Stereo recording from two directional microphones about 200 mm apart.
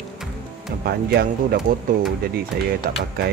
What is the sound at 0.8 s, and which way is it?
Speech, 50° right (ahead or behind).